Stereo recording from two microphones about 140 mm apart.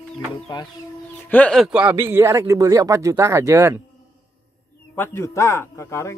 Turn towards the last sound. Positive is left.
turn(degrees=20)  # may be behind; listen again after turning